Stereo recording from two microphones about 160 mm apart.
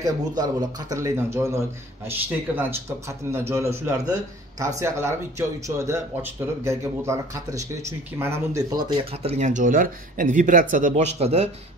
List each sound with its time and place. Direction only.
0.0 s a man's voice: 25° right (ahead or behind)
8.7 s speech: 25° right (ahead or behind)
9.1 s speech: 40° right (ahead or behind)